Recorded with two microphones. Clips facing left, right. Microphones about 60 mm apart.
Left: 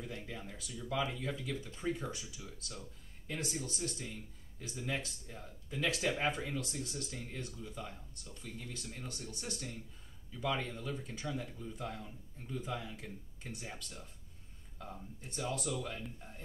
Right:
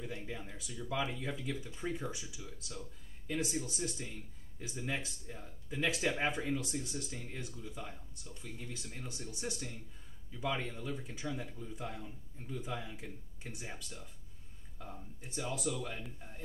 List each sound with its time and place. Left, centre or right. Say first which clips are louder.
0.1 s speech: right 1 dB; centre
2.4 s speech: right 1 dB; centre
3.7 s speech: right 1 dB; centre